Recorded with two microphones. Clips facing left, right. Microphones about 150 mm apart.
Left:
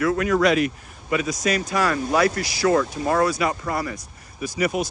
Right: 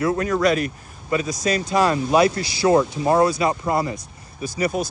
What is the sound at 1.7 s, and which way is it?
Speech, 25° right (ahead or behind).